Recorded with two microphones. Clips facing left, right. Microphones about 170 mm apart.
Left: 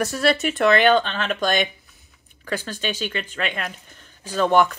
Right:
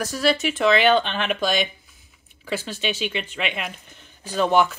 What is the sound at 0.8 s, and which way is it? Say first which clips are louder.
Speech: left 1 dB; 10° right (ahead or behind).